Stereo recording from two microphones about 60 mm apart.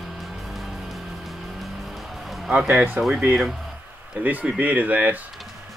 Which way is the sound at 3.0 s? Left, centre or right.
Centre.